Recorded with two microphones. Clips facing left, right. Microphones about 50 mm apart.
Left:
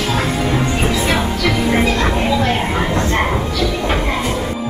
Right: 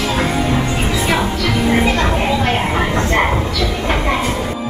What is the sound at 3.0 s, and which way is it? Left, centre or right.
Train, right.